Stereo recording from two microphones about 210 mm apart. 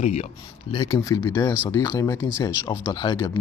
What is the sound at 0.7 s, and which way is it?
Speech, 15° left (ahead or behind).